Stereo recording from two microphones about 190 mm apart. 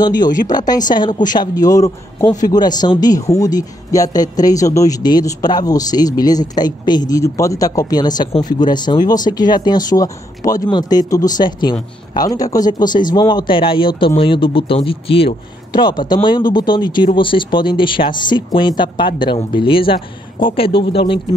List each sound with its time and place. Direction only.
0.5 s a man's voice: 20° left (ahead or behind)